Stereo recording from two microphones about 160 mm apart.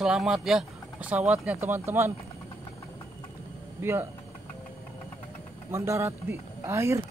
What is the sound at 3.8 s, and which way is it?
Speech, 15° right (ahead or behind).